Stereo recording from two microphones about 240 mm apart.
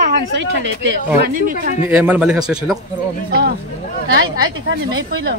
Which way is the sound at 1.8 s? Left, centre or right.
Centre.